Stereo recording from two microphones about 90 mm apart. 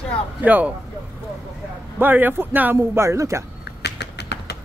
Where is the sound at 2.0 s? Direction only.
20° right (ahead or behind).